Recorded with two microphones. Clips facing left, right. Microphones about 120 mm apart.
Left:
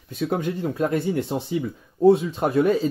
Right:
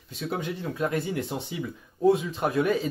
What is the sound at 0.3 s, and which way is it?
Speech, 45° left (ahead or behind).